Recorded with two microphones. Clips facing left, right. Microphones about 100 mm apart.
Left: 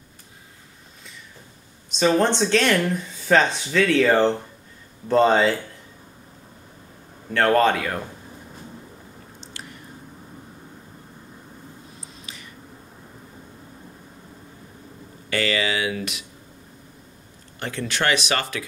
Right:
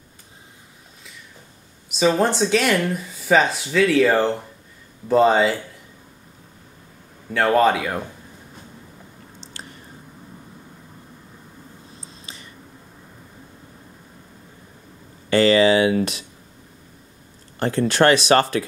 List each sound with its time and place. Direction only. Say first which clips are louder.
1.9 s speech: right 1 dB; 5° right (ahead or behind)
7.3 s speech: right 1 dB; 5° right (ahead or behind)
15.2 s speech: right 9 dB; 30° right (ahead or behind)
17.6 s speech: right 9 dB; 40° right (ahead or behind)